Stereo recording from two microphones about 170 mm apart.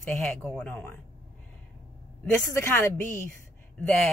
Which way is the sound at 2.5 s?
15° left (ahead or behind).